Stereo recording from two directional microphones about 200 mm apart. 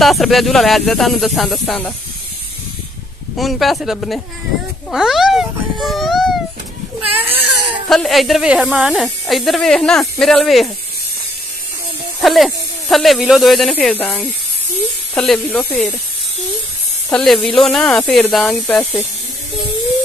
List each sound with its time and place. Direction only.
0.0 s speech: centre (ahead or behind)
3.3 s speech: centre (ahead or behind)
7.3 s speech: 25° right (ahead or behind)
7.9 s speech: centre (ahead or behind)
12.2 s speech: centre (ahead or behind)
17.1 s speech: 5° left (ahead or behind)